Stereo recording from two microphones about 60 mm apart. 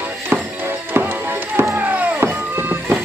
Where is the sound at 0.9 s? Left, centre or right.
Right.